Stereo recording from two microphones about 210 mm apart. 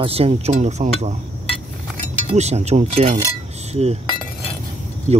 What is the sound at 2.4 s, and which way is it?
Speech, 30° right (ahead or behind).